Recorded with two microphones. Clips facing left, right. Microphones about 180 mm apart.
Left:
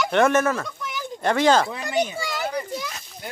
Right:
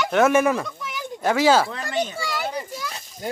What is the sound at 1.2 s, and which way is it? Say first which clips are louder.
Speech: right 1 dB; 5° right (ahead or behind).